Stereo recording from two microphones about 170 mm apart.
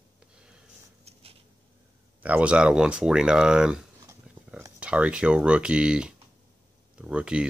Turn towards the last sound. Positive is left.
turn(degrees=-5)  # may be behind; listen again after turning